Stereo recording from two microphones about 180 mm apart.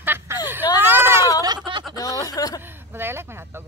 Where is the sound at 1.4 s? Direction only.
25° right (ahead or behind).